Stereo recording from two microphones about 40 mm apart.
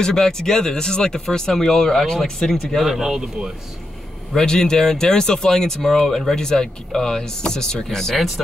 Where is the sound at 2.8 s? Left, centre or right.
Centre.